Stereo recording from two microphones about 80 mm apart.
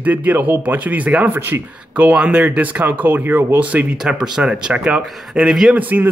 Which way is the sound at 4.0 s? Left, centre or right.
Centre.